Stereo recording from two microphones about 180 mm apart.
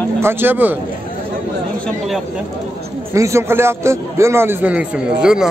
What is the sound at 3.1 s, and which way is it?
A man's voice, 15° right (ahead or behind).